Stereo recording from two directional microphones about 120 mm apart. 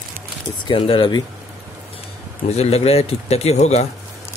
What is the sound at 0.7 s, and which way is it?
Speech, 50° left (ahead or behind).